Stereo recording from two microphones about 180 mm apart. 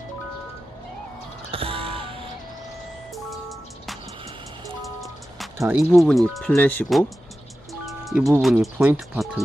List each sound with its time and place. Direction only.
1.5 s a sound: 30° right (ahead or behind)
3.3 s music: centre (ahead or behind)
5.6 s speech: 15° right (ahead or behind)
5.9 s speech: centre (ahead or behind)
8.4 s speech: centre (ahead or behind)